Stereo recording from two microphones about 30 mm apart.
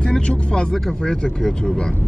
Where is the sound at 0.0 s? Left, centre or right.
Left.